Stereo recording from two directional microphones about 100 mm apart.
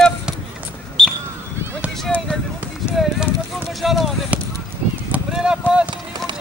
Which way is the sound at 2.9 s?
5° right (ahead or behind).